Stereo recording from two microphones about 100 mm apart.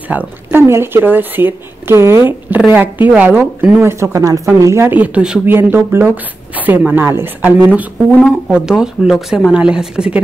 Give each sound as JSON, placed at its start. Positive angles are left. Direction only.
{"t": 0.1, "sound": "speech", "side_deg": -15}
{"t": 4.0, "sound": "a woman's voice", "side_deg": -30}
{"t": 5.5, "sound": "speech", "side_deg": -20}